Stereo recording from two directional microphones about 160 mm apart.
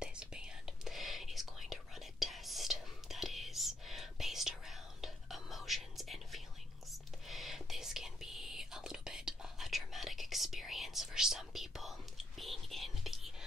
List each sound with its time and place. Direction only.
0.0 s whispering: 5° right (ahead or behind)